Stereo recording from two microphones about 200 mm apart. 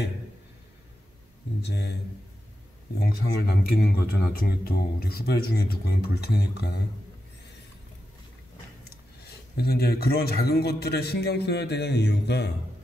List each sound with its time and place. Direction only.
1.6 s speech: 55° left (ahead or behind)
3.0 s speech: 50° left (ahead or behind)
9.2 s speech: 50° left (ahead or behind)